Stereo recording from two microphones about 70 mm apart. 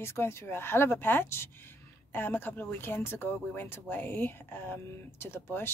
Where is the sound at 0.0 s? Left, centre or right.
Left.